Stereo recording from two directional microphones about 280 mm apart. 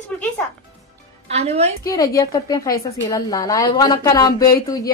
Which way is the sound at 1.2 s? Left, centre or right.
Right.